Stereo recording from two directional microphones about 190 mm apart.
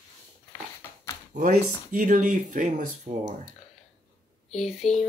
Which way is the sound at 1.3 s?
45° right (ahead or behind).